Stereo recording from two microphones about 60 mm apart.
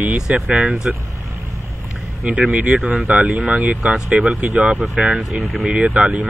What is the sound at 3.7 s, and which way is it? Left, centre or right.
Speech, centre.